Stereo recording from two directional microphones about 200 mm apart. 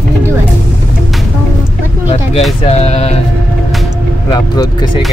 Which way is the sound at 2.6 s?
30° left (ahead or behind).